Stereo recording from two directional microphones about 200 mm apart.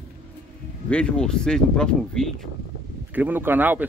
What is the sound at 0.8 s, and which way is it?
Speech, 5° left (ahead or behind).